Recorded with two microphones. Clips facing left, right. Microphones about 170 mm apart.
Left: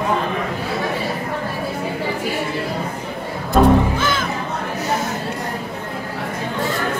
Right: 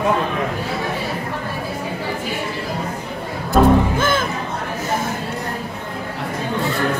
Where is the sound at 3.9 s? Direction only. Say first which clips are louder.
Right 2 dB; 50° right (ahead or behind).